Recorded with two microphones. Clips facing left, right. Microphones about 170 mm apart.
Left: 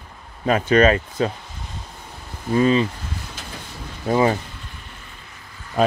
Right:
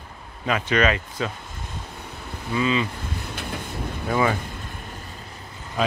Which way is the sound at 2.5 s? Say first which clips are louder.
Left 6 dB; 45° left (ahead or behind).